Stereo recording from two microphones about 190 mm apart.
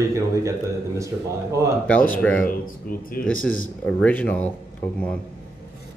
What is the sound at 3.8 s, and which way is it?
Speech, 10° left (ahead or behind).